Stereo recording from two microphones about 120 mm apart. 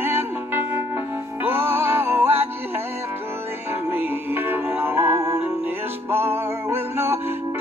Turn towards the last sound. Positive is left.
turn(degrees=-20)  # may be behind; listen again after turning